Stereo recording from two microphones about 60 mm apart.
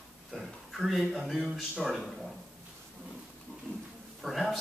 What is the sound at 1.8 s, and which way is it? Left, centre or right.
Speech, centre.